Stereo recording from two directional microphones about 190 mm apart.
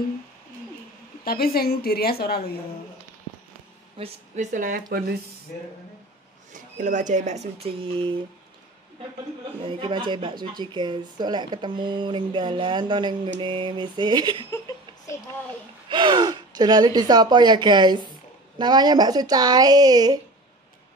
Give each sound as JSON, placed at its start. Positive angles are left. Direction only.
{"t": 1.2, "sound": "a woman's voice", "side_deg": 55}
{"t": 4.0, "sound": "speech", "side_deg": -40}
{"t": 6.5, "sound": "speech", "side_deg": -40}
{"t": 9.6, "sound": "speech", "side_deg": -25}
{"t": 15.9, "sound": "speech", "side_deg": -25}